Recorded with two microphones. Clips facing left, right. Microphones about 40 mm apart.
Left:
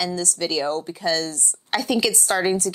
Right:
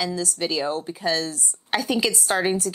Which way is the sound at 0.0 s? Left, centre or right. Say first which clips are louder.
Left 1 dB; right.